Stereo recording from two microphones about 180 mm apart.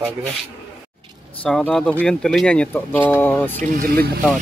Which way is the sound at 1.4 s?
5° left (ahead or behind).